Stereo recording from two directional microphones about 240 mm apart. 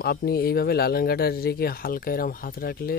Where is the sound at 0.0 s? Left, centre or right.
Left.